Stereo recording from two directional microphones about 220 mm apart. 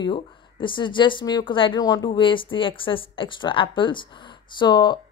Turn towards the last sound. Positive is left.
turn(degrees=20)  # may be behind; listen again after turning